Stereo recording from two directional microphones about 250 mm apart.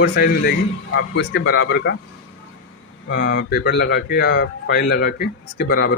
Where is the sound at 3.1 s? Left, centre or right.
Left.